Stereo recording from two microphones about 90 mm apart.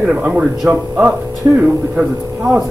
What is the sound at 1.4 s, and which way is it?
Speech, 35° right (ahead or behind).